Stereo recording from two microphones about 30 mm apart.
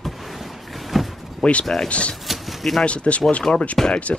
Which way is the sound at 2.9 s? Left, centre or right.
Left.